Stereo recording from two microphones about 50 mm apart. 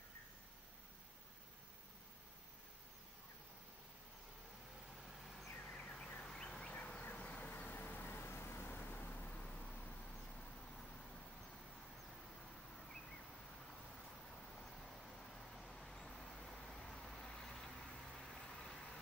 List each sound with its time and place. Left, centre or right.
5.0 s vehicle: centre
5.6 s car alarm: centre
7.0 s vehicle: left
9.3 s a sound: left
15.1 s vehicle: centre